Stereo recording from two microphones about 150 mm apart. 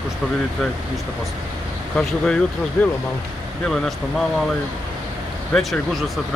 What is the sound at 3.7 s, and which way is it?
Speech, centre (ahead or behind).